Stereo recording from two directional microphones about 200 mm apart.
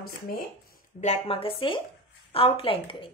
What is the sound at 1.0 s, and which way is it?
A woman's voice, 30° left (ahead or behind).